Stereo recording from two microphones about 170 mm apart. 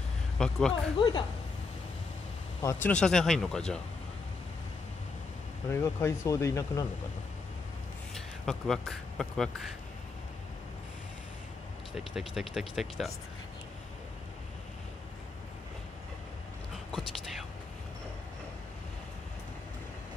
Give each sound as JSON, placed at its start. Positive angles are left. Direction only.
{"t": 0.4, "sound": "speech", "side_deg": 5}
{"t": 0.9, "sound": "speech", "side_deg": 30}
{"t": 2.6, "sound": "speech", "side_deg": 10}
{"t": 5.9, "sound": "speech", "side_deg": 15}
{"t": 8.1, "sound": "speech", "side_deg": 0}
{"t": 11.9, "sound": "speech", "side_deg": 0}
{"t": 16.9, "sound": "whispering", "side_deg": 0}